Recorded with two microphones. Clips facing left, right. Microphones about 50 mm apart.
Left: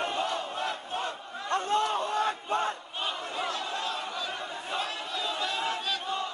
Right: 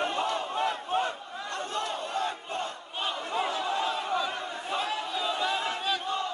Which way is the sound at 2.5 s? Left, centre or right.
Left.